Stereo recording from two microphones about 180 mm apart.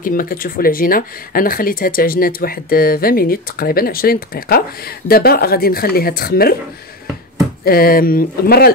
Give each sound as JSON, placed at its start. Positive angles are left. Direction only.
{"t": 0.0, "sound": "speech", "side_deg": 50}
{"t": 7.6, "sound": "speech", "side_deg": 55}